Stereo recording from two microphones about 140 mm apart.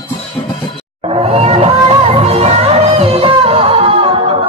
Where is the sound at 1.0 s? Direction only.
40° right (ahead or behind).